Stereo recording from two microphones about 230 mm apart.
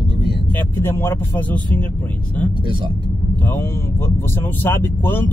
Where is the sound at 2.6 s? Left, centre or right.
Right.